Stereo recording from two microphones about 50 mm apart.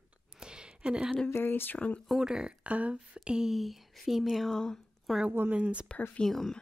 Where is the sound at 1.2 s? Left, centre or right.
Left.